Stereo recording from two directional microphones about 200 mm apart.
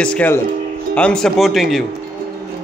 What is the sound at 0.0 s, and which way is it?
Speech, 5° left (ahead or behind).